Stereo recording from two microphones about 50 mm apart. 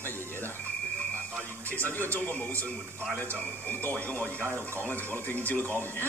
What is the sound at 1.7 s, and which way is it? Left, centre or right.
Speech, left.